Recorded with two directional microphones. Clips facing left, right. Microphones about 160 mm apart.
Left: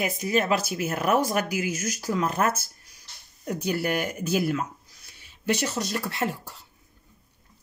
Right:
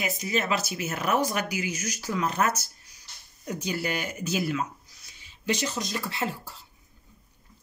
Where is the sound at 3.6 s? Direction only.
55° left (ahead or behind).